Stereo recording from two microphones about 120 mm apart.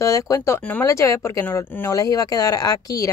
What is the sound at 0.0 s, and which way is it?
Speech, 25° left (ahead or behind).